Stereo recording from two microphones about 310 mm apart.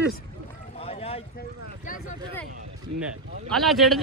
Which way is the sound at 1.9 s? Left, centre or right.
Left.